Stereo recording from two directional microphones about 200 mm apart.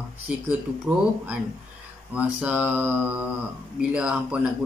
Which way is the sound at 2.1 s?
5° right (ahead or behind).